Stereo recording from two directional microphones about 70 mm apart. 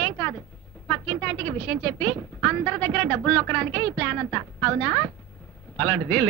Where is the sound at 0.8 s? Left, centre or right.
Centre.